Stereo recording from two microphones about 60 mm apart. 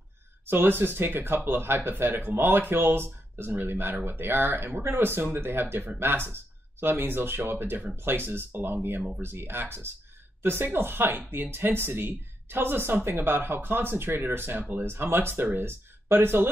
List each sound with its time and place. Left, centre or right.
0.5 s speech: right